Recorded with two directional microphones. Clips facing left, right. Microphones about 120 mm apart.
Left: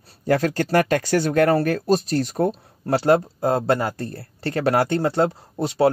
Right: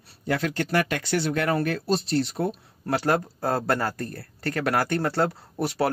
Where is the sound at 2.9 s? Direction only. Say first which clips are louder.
Left 6 dB; 25° left (ahead or behind).